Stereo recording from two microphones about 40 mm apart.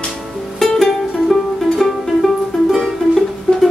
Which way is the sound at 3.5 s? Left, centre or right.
Centre.